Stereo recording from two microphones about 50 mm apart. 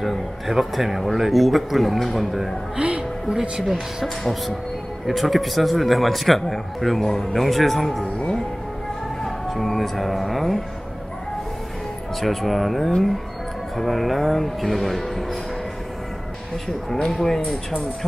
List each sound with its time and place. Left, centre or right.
0.0 s a man's voice: centre
2.8 s music: right
4.0 s a man's voice: centre
9.2 s music: centre
12.2 s a man's voice: centre
16.6 s speech: centre
17.4 s speech: left